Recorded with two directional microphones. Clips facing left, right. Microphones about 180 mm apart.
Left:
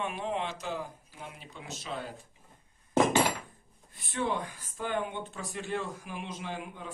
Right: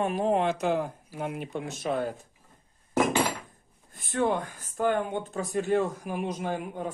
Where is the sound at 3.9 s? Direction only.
45° right (ahead or behind).